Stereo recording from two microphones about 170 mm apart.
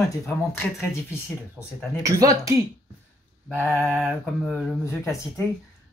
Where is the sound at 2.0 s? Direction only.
20° right (ahead or behind).